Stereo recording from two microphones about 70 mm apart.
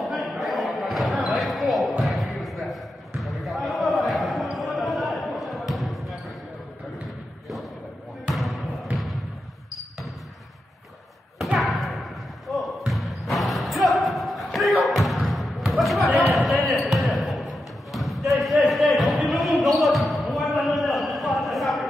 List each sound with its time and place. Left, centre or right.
0.0 s basketball bounce: centre
8.4 s basketball bounce: centre
11.4 s thump: centre
12.4 s a sound: centre
13.9 s thump: centre
15.7 s basketball bounce: centre